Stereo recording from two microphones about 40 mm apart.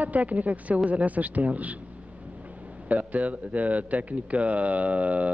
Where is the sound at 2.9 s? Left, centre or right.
Right.